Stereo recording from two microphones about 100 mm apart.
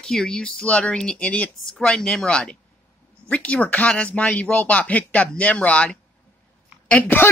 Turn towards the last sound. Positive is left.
turn(degrees=20)  # may be behind; listen again after turning